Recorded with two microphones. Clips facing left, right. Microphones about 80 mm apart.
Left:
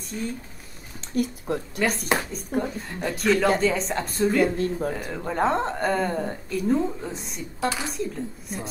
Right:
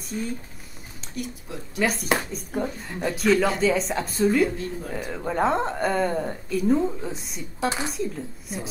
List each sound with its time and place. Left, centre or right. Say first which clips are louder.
0.1 s a woman's voice: right 1 dB; centre
1.1 s speech: left 9 dB; left
1.8 s a woman's voice: right 2 dB; centre
4.6 s speech: left 6 dB; left
4.9 s a woman's voice: right 1 dB; centre